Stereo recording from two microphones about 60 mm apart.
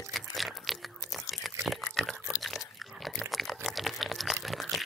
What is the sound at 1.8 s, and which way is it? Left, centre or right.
Pig, centre.